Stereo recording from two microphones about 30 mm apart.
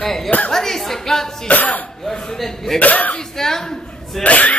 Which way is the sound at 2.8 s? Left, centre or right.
Left.